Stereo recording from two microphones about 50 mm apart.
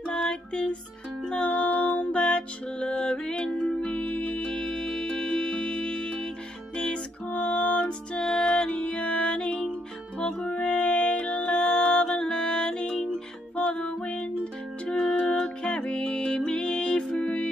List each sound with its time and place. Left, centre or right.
0.1 s music: centre
7.2 s music: left
8.2 s music: centre